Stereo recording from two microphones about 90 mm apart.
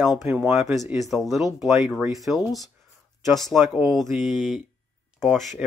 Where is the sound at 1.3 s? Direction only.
Centre (ahead or behind).